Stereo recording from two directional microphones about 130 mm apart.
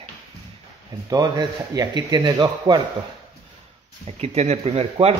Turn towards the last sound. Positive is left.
turn(degrees=-50)  # may be behind; listen again after turning